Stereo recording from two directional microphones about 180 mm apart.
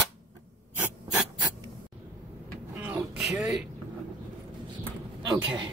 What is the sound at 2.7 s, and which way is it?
Vehicle, 15° right (ahead or behind).